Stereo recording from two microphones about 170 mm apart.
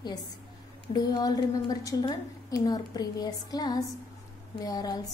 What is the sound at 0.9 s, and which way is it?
A woman's voice, 25° left (ahead or behind).